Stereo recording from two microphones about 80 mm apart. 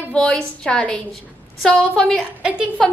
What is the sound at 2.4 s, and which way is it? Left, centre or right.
Speech, centre.